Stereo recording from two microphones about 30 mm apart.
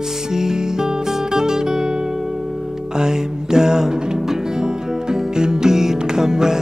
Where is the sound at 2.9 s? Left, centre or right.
Right.